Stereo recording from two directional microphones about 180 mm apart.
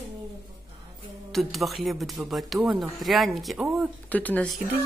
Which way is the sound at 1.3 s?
Centre (ahead or behind).